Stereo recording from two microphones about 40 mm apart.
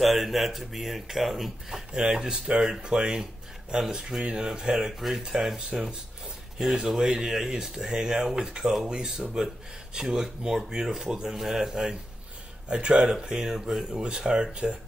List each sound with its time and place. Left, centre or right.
0.0 s speech: centre
2.0 s speech: centre
6.7 s speech: centre
12.6 s speech: right